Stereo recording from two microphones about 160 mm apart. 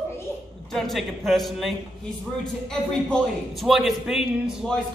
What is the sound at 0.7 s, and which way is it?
A man's voice, centre (ahead or behind).